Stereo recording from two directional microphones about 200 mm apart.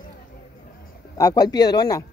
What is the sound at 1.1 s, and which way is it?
Speech, 20° left (ahead or behind).